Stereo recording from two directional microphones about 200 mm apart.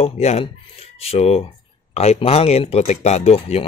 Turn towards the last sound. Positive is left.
turn(degrees=30)  # may be behind; listen again after turning